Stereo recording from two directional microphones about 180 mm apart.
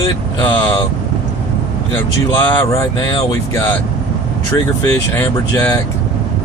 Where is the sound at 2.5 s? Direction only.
15° left (ahead or behind).